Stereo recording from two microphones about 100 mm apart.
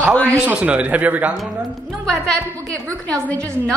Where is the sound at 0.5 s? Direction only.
10° right (ahead or behind).